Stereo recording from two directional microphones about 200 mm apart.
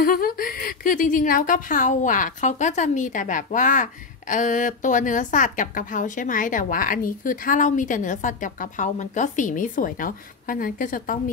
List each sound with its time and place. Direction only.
0.0 s a woman's voice: 45° left (ahead or behind)